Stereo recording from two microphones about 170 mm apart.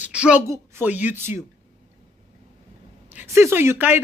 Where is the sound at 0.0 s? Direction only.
5° right (ahead or behind).